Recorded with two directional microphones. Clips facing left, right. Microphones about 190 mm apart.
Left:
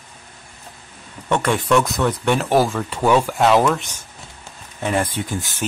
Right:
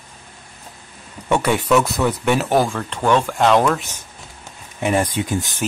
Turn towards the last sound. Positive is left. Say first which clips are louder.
# right 3 dB
turn(degrees=-20)  # may be behind; listen again after turning